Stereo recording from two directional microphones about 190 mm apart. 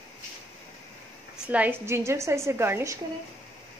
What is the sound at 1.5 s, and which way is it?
A woman's voice, 10° right (ahead or behind).